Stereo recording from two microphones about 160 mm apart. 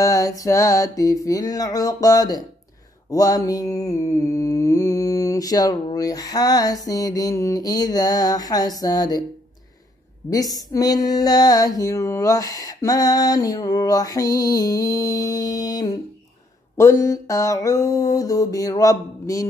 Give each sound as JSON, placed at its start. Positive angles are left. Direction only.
{"t": 0.0, "sound": "mantra", "side_deg": 20}
{"t": 10.3, "sound": "mantra", "side_deg": 20}